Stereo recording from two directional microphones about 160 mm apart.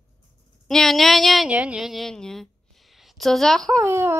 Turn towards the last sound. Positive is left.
turn(degrees=-15)  # may be behind; listen again after turning